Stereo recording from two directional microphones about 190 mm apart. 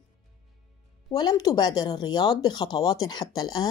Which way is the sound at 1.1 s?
20° left (ahead or behind).